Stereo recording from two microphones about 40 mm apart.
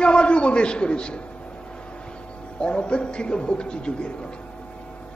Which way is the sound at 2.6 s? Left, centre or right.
Left.